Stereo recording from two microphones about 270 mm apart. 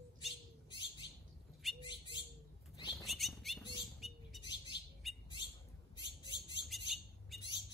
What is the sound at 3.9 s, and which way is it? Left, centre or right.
Bird, centre.